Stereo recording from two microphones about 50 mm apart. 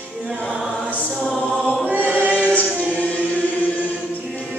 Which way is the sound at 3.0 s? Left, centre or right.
Left.